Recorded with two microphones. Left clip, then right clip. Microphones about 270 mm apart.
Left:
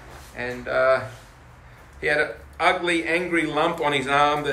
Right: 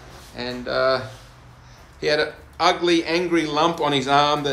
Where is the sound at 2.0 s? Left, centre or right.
Centre.